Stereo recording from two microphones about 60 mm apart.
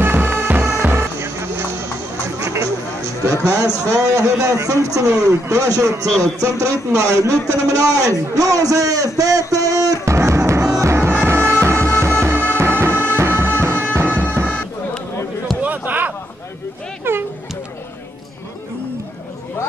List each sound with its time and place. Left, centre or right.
0.0 s bagpipes: right
0.8 s music: right
2.3 s music: right
3.8 s a man's voice: right
10.0 s music: right
15.6 s basketball bounce: right
17.1 s a sound: right